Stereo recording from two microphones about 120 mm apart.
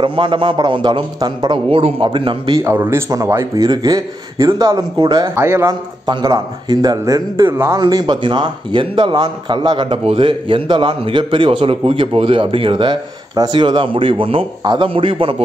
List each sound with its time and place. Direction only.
0.0 s speech: 45° right (ahead or behind)
2.6 s a man's voice: 20° right (ahead or behind); by 5.3 s 40° right (ahead or behind)
5.3 s a man's voice: 20° right (ahead or behind)
6.0 s a man's voice: 35° right (ahead or behind)
7.8 s speech: 35° right (ahead or behind)